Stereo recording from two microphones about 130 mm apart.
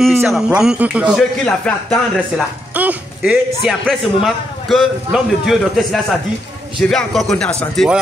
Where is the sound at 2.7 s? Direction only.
10° right (ahead or behind).